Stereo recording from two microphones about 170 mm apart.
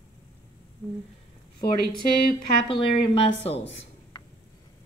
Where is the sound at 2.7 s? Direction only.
30° left (ahead or behind).